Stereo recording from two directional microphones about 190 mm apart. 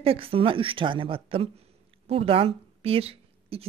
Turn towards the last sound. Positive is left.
turn(degrees=-30)  # may be behind; listen again after turning